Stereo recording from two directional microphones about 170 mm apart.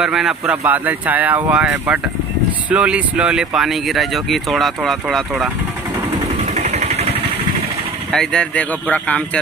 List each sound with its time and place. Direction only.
0.0 s speech: 5° right (ahead or behind)
6.4 s vehicle: 40° right (ahead or behind)
8.1 s speech: 5° left (ahead or behind)